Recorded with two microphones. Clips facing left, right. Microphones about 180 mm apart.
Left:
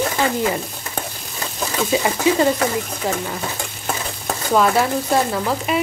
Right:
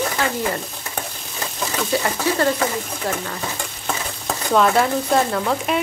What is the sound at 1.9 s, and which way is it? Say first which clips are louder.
Speech: left 4 dB; 15° left (ahead or behind).